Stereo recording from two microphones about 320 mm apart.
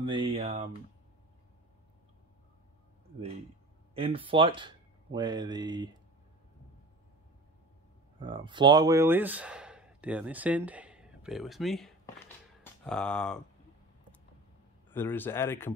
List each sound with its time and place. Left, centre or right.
0.0 s speech: centre
3.9 s speech: centre
8.2 s speech: centre
14.9 s speech: centre